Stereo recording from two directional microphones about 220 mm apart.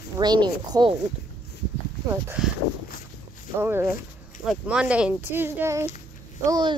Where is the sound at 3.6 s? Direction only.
10° right (ahead or behind).